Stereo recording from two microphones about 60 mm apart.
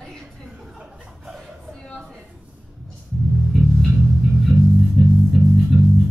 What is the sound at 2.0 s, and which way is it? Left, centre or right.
Speech, centre.